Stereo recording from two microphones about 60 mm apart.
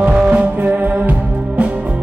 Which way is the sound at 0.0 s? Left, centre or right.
Right.